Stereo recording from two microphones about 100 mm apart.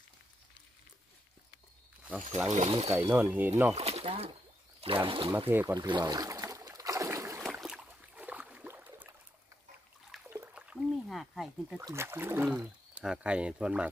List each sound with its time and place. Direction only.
2.0 s speech: 10° right (ahead or behind)
2.6 s speech: 90° right
3.1 s speech: 20° right (ahead or behind)
3.7 s speech: 90° right
4.7 s speech: 65° right (ahead or behind)
5.5 s speech: 20° right (ahead or behind)
5.8 s boat: 45° right (ahead or behind); by 7.4 s 30° right (ahead or behind)
7.6 s a sound: 10° right (ahead or behind)
10.3 s a sound: 15° right (ahead or behind)
11.9 s speech: 25° right (ahead or behind)
12.4 s speech: 10° right (ahead or behind)